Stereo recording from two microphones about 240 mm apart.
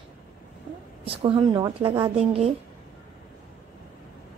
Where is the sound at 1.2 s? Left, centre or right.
Centre.